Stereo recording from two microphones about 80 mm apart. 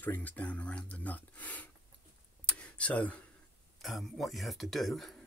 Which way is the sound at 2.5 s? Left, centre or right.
Centre.